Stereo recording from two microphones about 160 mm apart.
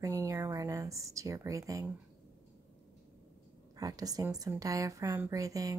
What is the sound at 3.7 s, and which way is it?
A woman's voice, 20° right (ahead or behind).